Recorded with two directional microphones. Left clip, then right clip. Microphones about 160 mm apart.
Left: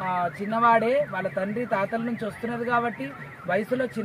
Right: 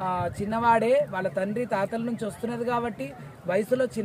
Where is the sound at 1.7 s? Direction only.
20° right (ahead or behind).